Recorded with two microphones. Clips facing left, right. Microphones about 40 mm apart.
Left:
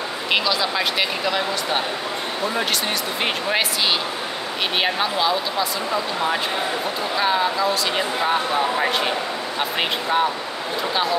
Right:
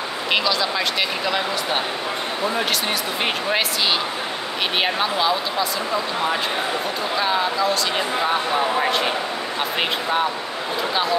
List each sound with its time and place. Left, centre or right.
0.3 s speech: centre
4.7 s speech: centre
7.2 s speech: centre